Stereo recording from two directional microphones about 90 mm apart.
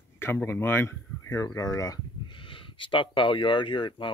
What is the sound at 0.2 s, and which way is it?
Speech, 25° left (ahead or behind).